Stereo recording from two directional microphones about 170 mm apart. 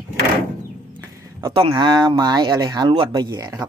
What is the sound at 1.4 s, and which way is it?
Speech, 30° right (ahead or behind).